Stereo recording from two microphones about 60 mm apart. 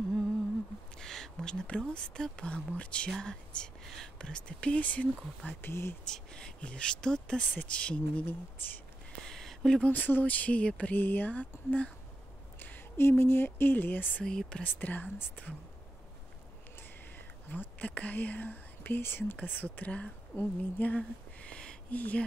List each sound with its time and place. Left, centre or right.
0.9 s speech: centre; by 5.6 s left
5.6 s speech: left
6.0 s speech: centre
9.2 s a sound: centre
9.8 s speech: left
12.5 s speech: left
14.2 s speech: centre
14.6 s speech: left
17.5 s speech: left
20.8 s a sound: left